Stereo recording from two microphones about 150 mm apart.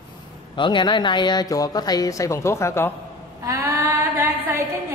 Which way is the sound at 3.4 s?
20° right (ahead or behind).